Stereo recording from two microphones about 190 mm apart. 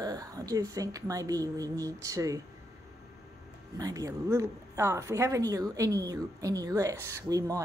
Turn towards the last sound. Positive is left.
turn(degrees=-15)  # may be behind; listen again after turning